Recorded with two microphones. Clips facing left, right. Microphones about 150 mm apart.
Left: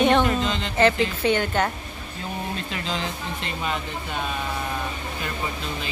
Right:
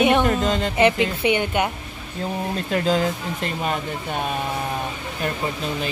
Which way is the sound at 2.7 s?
45° right (ahead or behind).